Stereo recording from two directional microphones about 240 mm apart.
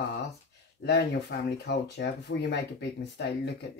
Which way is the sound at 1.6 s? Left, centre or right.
Left.